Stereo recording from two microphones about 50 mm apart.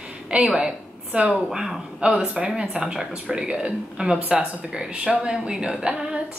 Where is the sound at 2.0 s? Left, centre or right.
Right.